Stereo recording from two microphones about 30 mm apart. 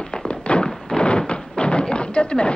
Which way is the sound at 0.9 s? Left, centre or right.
Left.